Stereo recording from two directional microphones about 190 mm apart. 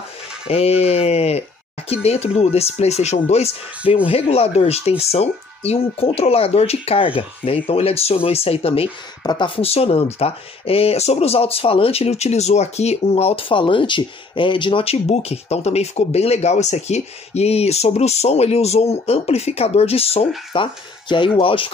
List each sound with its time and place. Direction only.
0.5 s speech: 30° left (ahead or behind)